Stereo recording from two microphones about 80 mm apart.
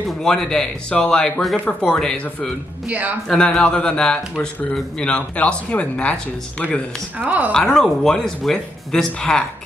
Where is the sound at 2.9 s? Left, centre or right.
Right.